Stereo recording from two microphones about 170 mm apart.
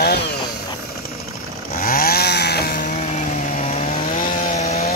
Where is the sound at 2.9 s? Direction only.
40° left (ahead or behind).